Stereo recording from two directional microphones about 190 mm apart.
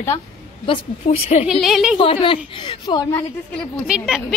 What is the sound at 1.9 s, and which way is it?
A woman's voice, 30° left (ahead or behind).